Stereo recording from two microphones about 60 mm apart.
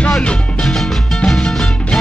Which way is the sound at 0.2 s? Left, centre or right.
Centre.